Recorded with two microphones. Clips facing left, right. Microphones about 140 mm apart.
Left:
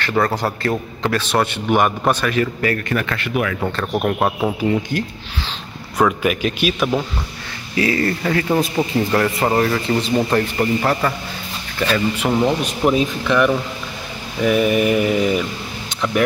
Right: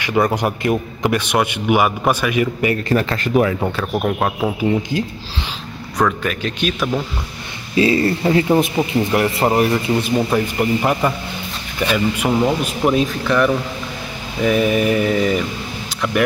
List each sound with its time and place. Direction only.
0.0 s a man's voice: 15° right (ahead or behind)
2.9 s speech: 30° right (ahead or behind)
3.8 s speech: centre (ahead or behind)
5.9 s a man's voice: 10° left (ahead or behind)
7.7 s a man's voice: 25° right (ahead or behind); by 15.4 s 5° left (ahead or behind)